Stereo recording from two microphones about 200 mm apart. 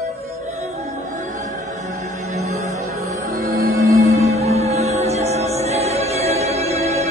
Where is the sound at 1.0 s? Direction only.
35° right (ahead or behind).